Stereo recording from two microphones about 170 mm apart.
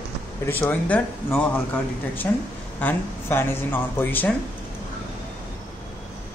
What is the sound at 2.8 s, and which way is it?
Speech, 10° left (ahead or behind).